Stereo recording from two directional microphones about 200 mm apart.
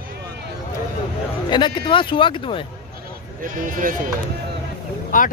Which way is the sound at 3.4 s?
40° right (ahead or behind).